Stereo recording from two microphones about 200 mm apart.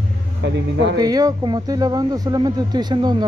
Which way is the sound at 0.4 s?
60° right (ahead or behind).